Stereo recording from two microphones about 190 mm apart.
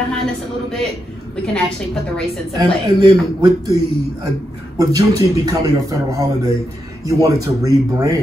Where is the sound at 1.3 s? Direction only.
5° left (ahead or behind).